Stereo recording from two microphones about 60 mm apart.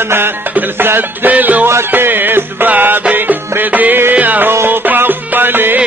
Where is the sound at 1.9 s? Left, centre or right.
Right.